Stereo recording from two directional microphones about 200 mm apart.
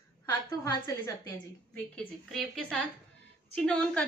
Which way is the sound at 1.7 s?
5° left (ahead or behind).